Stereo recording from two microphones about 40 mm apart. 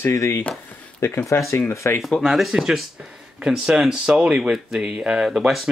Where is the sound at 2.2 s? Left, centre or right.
Centre.